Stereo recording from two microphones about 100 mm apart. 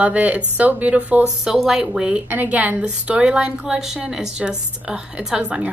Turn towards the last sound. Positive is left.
turn(degrees=-10)  # may be behind; listen again after turning